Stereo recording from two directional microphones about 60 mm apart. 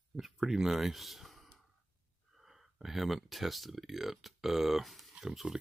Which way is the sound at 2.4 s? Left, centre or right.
Centre.